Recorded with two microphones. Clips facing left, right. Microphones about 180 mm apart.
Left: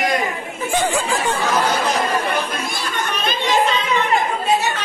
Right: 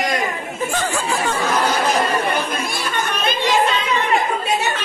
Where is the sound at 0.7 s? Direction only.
15° left (ahead or behind).